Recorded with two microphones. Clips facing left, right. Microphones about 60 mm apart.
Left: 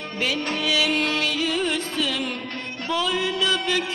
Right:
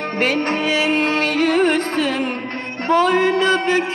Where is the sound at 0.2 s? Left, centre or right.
Right.